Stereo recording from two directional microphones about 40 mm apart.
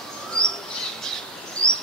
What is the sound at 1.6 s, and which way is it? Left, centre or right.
Chirp, left.